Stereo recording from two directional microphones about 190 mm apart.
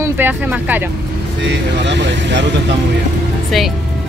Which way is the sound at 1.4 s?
65° right (ahead or behind).